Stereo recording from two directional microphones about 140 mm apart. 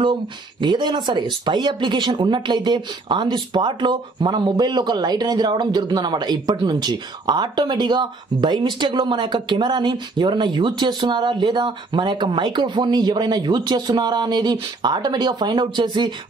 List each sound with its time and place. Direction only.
0.0 s speech: 35° right (ahead or behind)